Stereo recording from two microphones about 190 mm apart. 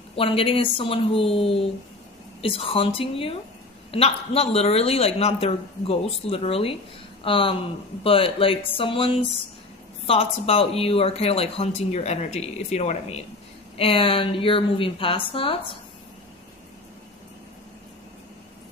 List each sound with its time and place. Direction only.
0.1 s a woman's voice: 30° left (ahead or behind)